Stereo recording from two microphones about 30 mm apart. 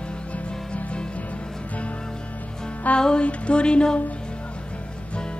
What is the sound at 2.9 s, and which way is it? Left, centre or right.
Music, left.